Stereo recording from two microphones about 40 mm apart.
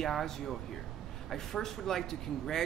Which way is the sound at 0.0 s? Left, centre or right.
Centre.